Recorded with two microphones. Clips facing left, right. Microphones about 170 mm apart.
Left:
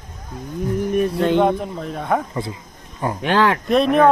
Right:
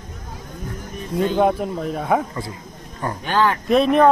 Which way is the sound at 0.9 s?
70° left (ahead or behind).